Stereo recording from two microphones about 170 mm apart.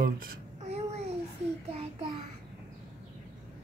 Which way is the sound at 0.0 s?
55° right (ahead or behind).